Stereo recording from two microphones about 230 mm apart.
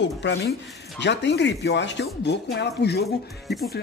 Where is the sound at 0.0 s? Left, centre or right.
Left.